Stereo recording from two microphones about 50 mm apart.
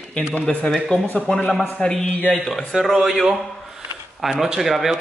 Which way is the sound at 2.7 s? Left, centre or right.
Centre.